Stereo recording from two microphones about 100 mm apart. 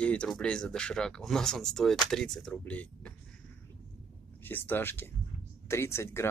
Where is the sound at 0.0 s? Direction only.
10° left (ahead or behind).